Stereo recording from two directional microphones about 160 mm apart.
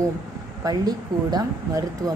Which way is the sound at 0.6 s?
25° right (ahead or behind).